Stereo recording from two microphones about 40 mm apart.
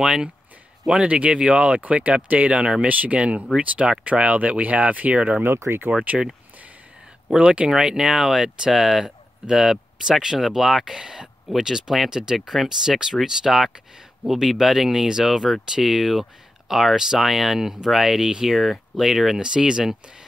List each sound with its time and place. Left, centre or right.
0.0 s speech: centre
1.0 s speech: right
1.8 s speech: right
2.9 s speech: right
5.4 s speech: right
6.1 s speech: right
7.3 s speech: right
10.4 s speech: centre
12.4 s speech: centre
12.6 s speech: centre
18.5 s speech: centre
19.0 s speech: centre